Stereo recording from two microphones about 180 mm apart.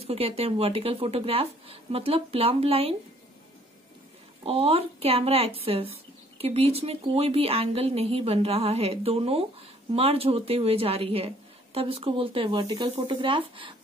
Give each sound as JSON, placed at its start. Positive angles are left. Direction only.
{"t": 0.0, "sound": "speech", "side_deg": -35}
{"t": 4.5, "sound": "speech", "side_deg": -30}